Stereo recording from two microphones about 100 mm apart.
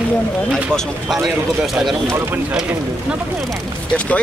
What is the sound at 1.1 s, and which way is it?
Speech, centre (ahead or behind).